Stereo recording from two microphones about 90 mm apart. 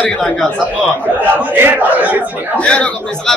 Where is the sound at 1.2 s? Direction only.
20° right (ahead or behind).